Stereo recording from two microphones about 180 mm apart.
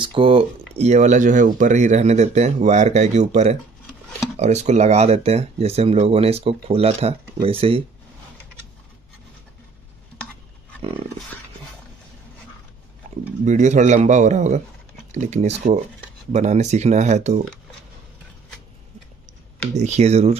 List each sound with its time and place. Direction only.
0.0 s speech: 30° right (ahead or behind)
13.0 s a sound: 45° right (ahead or behind)
13.5 s speech: 40° right (ahead or behind)
19.7 s speech: 40° right (ahead or behind)